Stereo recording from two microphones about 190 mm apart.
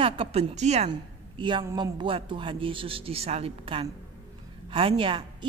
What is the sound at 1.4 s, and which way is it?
A woman's voice, 25° right (ahead or behind).